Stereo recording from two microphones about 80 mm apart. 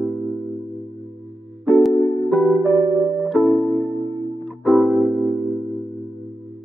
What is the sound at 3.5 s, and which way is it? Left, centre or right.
Music, centre.